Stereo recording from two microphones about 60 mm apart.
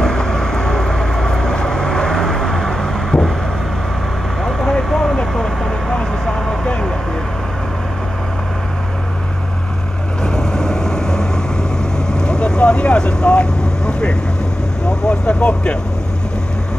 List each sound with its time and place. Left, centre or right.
0.0 s vehicle: centre
4.5 s vehicle: centre
10.2 s vehicle: centre